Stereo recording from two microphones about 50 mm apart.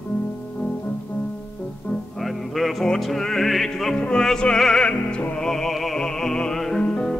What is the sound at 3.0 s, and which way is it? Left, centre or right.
Music, centre.